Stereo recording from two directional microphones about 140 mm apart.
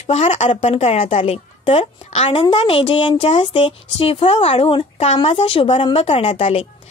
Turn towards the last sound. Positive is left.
turn(degrees=45)  # may be behind; listen again after turning